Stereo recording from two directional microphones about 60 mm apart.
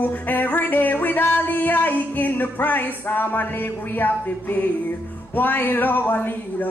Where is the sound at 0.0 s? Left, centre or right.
Left.